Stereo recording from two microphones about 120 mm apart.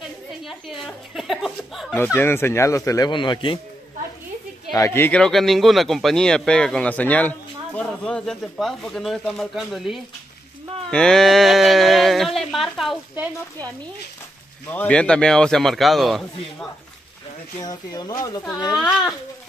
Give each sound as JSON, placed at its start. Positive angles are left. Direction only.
{"t": 0.5, "sound": "speech", "side_deg": 0}
{"t": 2.1, "sound": "speech", "side_deg": 20}
{"t": 3.1, "sound": "a man's voice", "side_deg": 40}
{"t": 4.7, "sound": "speech", "side_deg": 25}
{"t": 5.1, "sound": "speech", "side_deg": 5}
{"t": 14.7, "sound": "speech", "side_deg": 10}
{"t": 17.6, "sound": "speech", "side_deg": 35}
{"t": 18.8, "sound": "speech", "side_deg": 0}